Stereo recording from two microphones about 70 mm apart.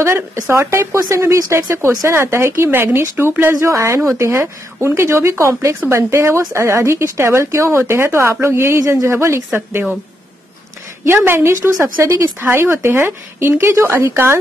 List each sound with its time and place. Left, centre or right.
0.0 s speech: right
3.5 s speech: right
9.1 s speech: right
11.1 s speech: right